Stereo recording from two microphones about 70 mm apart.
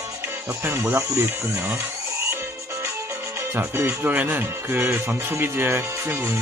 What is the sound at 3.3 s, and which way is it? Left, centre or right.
Speech, right.